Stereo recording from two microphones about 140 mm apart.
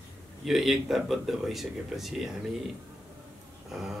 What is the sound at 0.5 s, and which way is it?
Speech, centre (ahead or behind).